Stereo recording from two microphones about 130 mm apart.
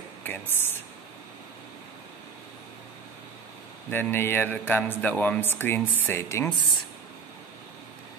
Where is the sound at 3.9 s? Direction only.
15° left (ahead or behind).